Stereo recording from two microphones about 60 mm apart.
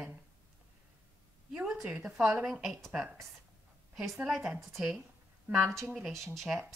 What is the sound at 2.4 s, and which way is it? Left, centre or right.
Speech, centre.